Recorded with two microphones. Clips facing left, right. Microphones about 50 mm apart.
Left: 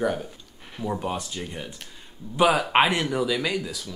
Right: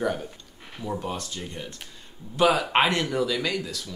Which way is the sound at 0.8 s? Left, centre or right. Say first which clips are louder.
Left 2 dB; centre.